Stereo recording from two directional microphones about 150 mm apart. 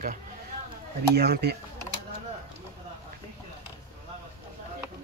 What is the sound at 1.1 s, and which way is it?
Speech, 90° right.